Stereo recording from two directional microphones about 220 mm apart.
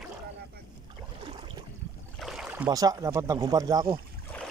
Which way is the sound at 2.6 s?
15° right (ahead or behind).